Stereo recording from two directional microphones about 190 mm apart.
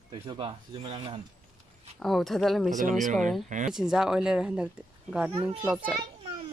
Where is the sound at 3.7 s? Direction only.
5° right (ahead or behind).